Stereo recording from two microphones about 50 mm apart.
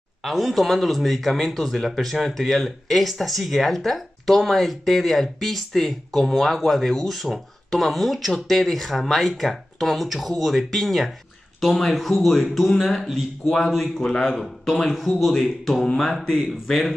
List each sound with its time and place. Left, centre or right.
0.2 s speech: centre
13.9 s a man's voice: centre
14.2 s speech: centre